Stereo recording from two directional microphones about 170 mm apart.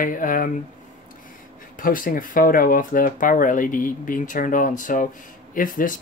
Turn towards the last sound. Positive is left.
turn(degrees=50)  # may be behind; listen again after turning